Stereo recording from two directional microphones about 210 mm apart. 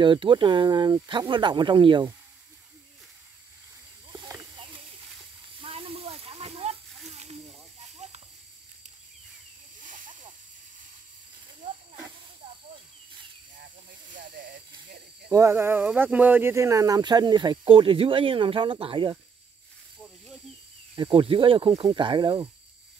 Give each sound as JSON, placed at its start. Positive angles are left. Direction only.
{"t": 0.0, "sound": "speech", "side_deg": -20}
{"t": 4.1, "sound": "snake", "side_deg": -20}
{"t": 9.8, "sound": "snake", "side_deg": -40}
{"t": 14.1, "sound": "hiss", "side_deg": -45}
{"t": 15.3, "sound": "speech", "side_deg": -10}
{"t": 20.9, "sound": "speech", "side_deg": -25}